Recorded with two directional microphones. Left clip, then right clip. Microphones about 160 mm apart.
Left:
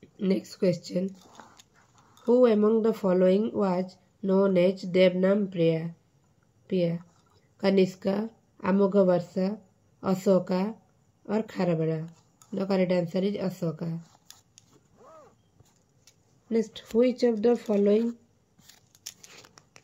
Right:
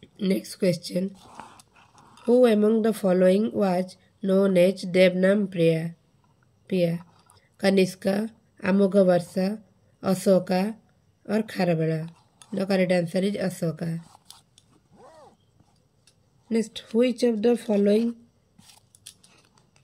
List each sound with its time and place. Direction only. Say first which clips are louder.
0.0 s a woman's voice: right 1 dB; 30° right (ahead or behind)
16.4 s speech: right 1 dB; 35° right (ahead or behind)
19.3 s a sound: left 7 dB; 60° left (ahead or behind)